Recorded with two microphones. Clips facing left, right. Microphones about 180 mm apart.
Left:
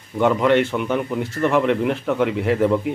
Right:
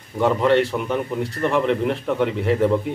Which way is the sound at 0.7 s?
Centre (ahead or behind).